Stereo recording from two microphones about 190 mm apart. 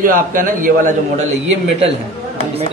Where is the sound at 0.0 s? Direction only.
45° right (ahead or behind).